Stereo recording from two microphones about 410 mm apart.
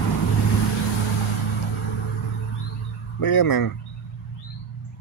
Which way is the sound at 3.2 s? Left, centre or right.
Left.